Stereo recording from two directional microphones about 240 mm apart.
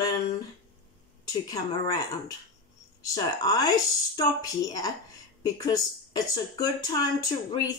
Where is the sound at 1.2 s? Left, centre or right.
Centre.